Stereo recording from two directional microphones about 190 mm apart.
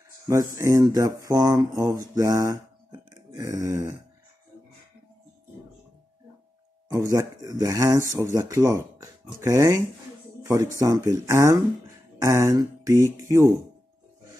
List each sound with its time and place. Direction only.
0.3 s speech: 15° right (ahead or behind)
6.9 s speech: 15° right (ahead or behind)